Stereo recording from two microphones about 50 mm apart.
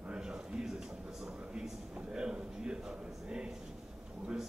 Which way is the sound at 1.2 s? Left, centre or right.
Centre.